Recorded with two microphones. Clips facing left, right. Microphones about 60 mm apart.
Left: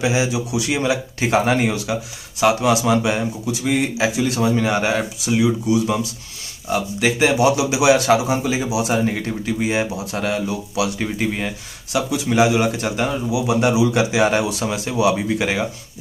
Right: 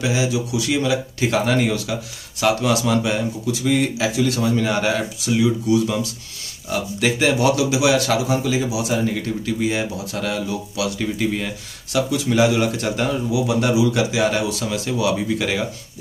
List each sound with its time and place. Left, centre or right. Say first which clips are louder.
0.0 s speech: left 1 dB; left
8.8 s speech: left 1 dB; left; by 13.6 s centre
13.6 s speech: left 2 dB; left